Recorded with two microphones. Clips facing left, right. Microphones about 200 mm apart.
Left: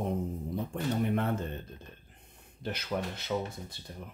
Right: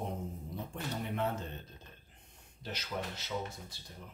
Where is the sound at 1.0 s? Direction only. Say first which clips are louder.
Left 3 dB; 55° left (ahead or behind).